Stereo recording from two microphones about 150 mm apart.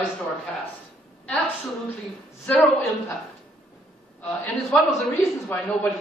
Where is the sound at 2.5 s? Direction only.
10° left (ahead or behind).